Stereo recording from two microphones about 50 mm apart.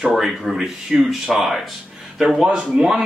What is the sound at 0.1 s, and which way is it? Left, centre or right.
Speech, centre.